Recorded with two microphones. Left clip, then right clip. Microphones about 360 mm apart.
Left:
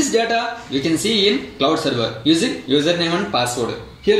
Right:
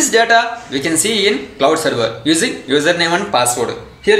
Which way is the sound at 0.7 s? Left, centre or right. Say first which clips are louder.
Right 2 dB; right.